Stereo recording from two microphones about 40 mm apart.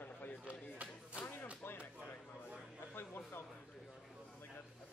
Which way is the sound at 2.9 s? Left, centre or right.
Left.